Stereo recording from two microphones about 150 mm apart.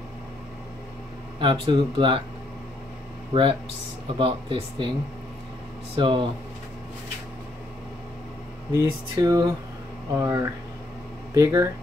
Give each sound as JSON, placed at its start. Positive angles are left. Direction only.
{"t": 1.4, "sound": "speech", "side_deg": -35}
{"t": 3.3, "sound": "speech", "side_deg": -30}
{"t": 5.9, "sound": "speech", "side_deg": -35}
{"t": 8.7, "sound": "speech", "side_deg": -20}